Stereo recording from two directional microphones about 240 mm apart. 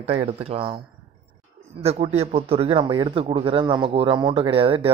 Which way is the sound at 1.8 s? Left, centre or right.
Right.